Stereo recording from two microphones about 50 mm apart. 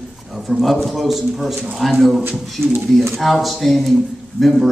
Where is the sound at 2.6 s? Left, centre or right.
Right.